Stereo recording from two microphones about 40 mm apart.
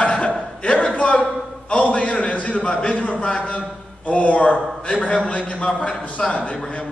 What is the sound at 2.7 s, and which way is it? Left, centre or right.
A man's voice, left.